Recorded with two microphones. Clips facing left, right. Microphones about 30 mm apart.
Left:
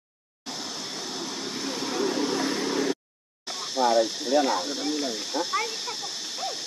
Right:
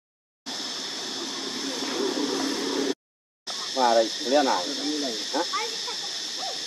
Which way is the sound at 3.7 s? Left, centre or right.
Right.